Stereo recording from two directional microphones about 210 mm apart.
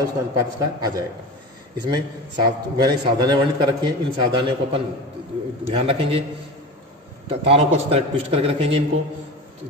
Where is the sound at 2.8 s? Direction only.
20° right (ahead or behind).